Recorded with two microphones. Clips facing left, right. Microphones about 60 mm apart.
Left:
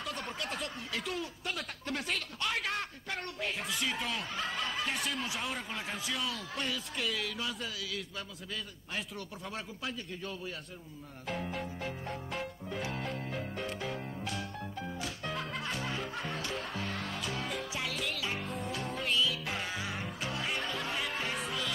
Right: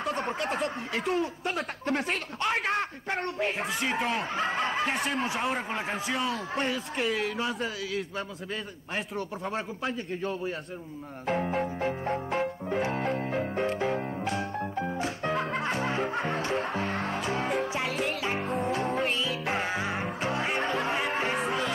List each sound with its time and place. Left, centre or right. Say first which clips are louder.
0.3 s a sound: right 9 dB; right
1.4 s a sound: right 8 dB; right
3.1 s a man's voice: right 8 dB; right
3.6 s speech: right 7 dB; right
9.1 s speech: right 9 dB; right
11.2 s music: right 9 dB; right
11.8 s piano: right 10 dB; right
14.6 s music: right 9 dB; right
15.6 s music: right 8 dB; right
16.0 s speech: right 9 dB; right
18.2 s music: right 7 dB; right
18.6 s music: right 9 dB; right
19.8 s music: right 8 dB; right